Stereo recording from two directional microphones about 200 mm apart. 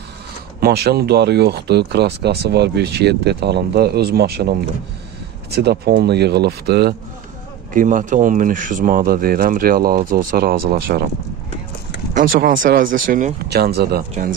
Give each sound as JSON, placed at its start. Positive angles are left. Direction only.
{"t": 0.6, "sound": "speech", "side_deg": -50}
{"t": 7.7, "sound": "speech", "side_deg": -40}
{"t": 12.1, "sound": "speech", "side_deg": -45}